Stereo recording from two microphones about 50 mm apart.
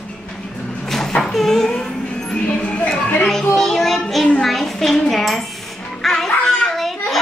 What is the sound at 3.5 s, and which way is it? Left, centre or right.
Child singing, centre.